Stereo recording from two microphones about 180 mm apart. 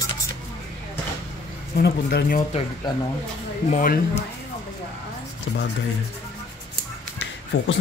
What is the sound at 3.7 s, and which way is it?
Speech, 50° left (ahead or behind).